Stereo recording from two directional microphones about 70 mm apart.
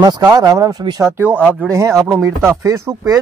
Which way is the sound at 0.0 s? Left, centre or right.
Right.